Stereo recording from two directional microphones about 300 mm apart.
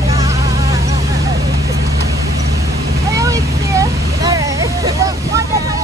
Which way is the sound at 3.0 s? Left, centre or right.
Centre.